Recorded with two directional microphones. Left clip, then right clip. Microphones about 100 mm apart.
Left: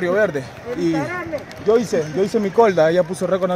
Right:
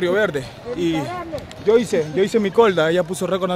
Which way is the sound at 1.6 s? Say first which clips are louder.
Right 1 dB; 10° right (ahead or behind).